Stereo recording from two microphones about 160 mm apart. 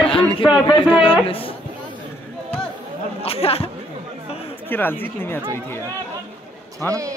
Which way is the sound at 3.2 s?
40° left (ahead or behind).